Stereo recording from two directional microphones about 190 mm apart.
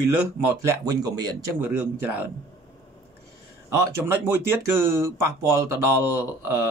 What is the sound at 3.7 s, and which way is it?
Speech, 15° right (ahead or behind).